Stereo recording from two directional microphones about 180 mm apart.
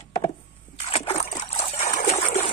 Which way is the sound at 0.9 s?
35° left (ahead or behind).